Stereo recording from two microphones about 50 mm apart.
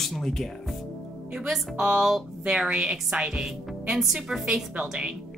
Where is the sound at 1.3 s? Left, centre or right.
Centre.